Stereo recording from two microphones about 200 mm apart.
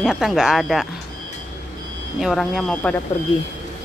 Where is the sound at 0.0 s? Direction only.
Centre (ahead or behind).